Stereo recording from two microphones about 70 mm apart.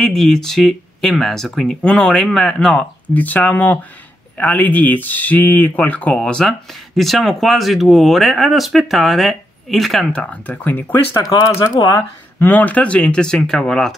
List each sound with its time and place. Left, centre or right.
0.0 s speech: centre
3.1 s speech: left; by 10.0 s centre
10.1 s speech: centre
11.7 s speech: left
12.4 s speech: left; by 13.9 s centre